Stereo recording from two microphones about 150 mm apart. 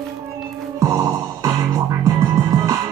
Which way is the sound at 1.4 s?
20° right (ahead or behind).